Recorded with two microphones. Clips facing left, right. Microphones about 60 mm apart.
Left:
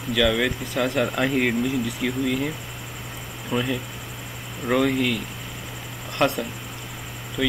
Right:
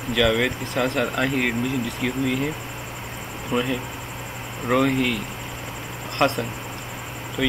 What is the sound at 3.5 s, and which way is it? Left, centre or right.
Speech, centre.